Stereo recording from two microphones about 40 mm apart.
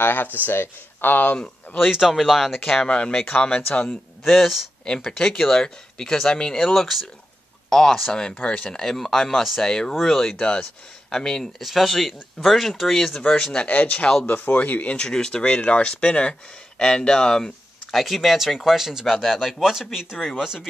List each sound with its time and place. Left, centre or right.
0.0 s speech: left
1.2 s speech: left
1.9 s speech: centre
2.7 s speech: centre
3.6 s speech: left
4.8 s speech: left
8.1 s speech: left; by 10.3 s centre
10.3 s speech: left
11.6 s speech: centre
13.7 s speech: left
14.9 s speech: left
15.4 s speech: left; by 17.5 s centre
17.9 s speech: centre
19.6 s speech: centre